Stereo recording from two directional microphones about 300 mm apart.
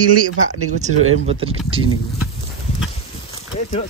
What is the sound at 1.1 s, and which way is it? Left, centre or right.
Speech, centre.